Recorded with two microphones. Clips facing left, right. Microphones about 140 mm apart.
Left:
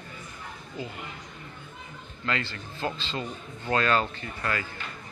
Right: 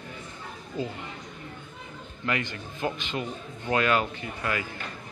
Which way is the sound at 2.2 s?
15° right (ahead or behind).